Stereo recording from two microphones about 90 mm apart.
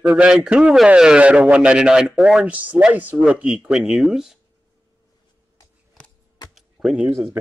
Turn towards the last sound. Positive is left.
turn(degrees=-10)  # may be behind; listen again after turning